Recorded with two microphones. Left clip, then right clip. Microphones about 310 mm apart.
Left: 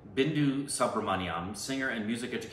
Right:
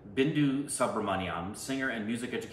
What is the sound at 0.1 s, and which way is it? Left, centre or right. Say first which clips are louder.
Speech: even; centre.